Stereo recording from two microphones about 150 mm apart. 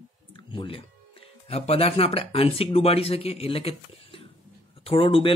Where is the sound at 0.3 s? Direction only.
35° left (ahead or behind).